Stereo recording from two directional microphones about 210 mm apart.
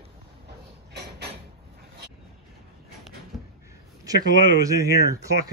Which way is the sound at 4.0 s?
15° right (ahead or behind).